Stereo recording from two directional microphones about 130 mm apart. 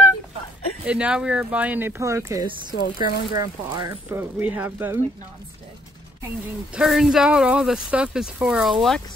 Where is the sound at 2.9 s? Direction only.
90° left.